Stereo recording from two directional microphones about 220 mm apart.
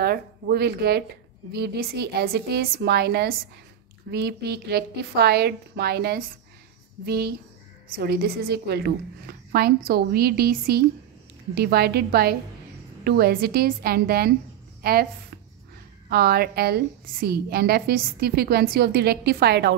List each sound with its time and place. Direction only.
0.0 s a woman's voice: 45° right (ahead or behind)
16.1 s a woman's voice: 45° right (ahead or behind)